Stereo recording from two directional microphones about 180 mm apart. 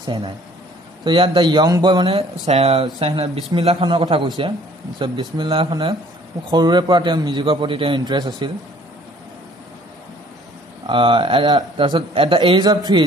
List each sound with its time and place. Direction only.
0.0 s a man's voice: 30° right (ahead or behind)
10.9 s speech: 30° right (ahead or behind)